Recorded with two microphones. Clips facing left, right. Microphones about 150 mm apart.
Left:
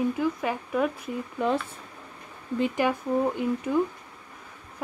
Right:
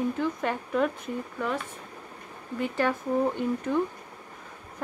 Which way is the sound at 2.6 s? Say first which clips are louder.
Left 2 dB; 15° left (ahead or behind).